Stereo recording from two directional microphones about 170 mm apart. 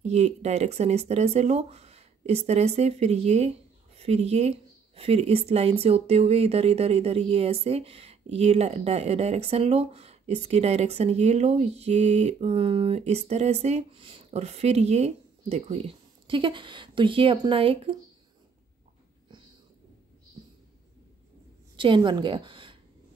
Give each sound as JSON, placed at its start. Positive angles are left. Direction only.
{"t": 0.0, "sound": "speech", "side_deg": -40}
{"t": 21.7, "sound": "a woman's voice", "side_deg": -30}